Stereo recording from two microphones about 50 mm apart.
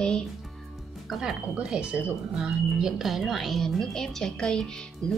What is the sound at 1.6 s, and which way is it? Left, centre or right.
Speech, right.